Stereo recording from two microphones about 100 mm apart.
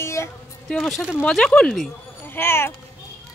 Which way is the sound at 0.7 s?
5° left (ahead or behind).